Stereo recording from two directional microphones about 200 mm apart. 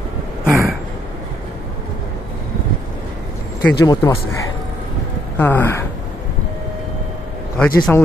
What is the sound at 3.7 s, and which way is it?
Speech, 20° left (ahead or behind).